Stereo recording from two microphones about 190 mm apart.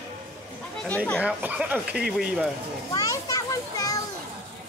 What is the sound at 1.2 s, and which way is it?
Speech, 5° right (ahead or behind).